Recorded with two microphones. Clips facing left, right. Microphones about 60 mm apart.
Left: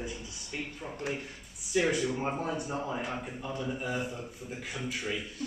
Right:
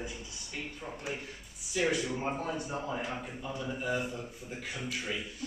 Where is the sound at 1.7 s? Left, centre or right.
Centre.